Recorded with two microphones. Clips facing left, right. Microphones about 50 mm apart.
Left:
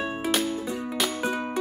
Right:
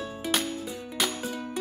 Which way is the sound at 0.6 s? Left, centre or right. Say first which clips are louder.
Left 6 dB; left.